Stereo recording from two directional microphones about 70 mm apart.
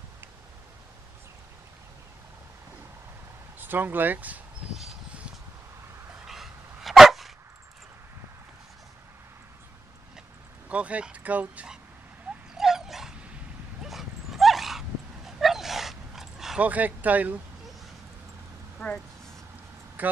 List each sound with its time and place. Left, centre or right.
3.5 s speech: right
6.2 s dog: centre
10.7 s speech: centre
12.3 s dog: centre
16.5 s speech: right
20.0 s speech: right